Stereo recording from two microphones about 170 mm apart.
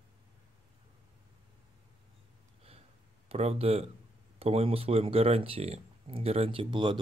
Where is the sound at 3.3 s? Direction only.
35° right (ahead or behind).